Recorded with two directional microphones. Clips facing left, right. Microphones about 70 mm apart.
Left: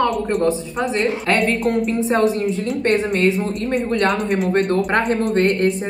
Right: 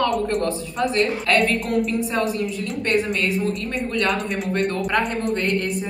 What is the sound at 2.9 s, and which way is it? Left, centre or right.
A woman's voice, left.